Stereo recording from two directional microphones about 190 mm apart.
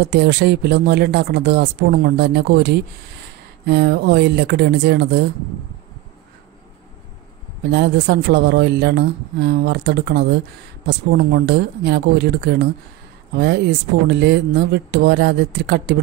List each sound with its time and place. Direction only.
0.1 s speech: 60° right (ahead or behind)
7.7 s speech: 60° right (ahead or behind)